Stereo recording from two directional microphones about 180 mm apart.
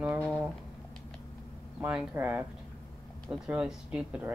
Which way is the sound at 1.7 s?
10° right (ahead or behind).